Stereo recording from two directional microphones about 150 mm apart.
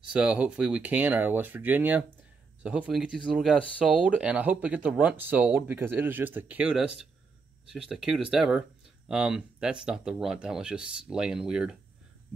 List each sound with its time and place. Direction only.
0.1 s speech: 5° right (ahead or behind)